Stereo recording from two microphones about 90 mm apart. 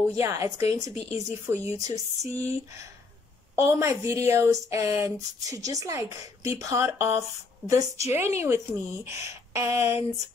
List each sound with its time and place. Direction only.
0.1 s a woman's voice: 30° right (ahead or behind)